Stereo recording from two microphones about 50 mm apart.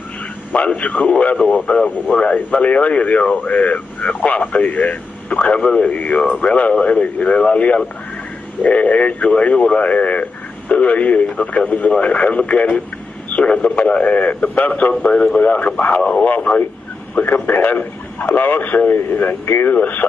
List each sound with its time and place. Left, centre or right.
0.5 s speech: left
15.0 s speech: centre
15.4 s a man's voice: left
16.0 s speech: centre
16.3 s a man's voice: left
19.8 s a man's voice: left